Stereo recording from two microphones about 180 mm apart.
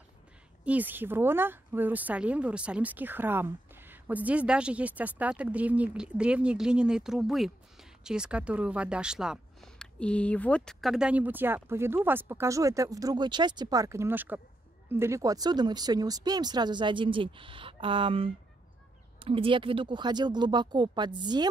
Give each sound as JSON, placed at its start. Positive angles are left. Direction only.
{"t": 0.7, "sound": "speech", "side_deg": -10}